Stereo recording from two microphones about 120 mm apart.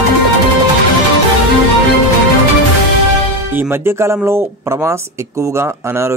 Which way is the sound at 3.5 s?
20° right (ahead or behind).